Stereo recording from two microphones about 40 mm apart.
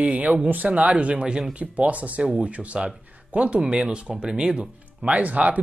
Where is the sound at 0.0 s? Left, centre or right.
Right.